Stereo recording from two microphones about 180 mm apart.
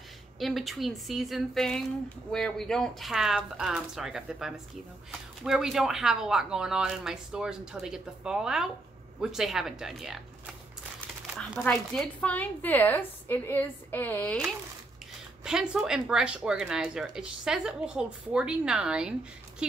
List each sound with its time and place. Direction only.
0.4 s a woman's voice: centre (ahead or behind)
15.4 s speech: 5° right (ahead or behind)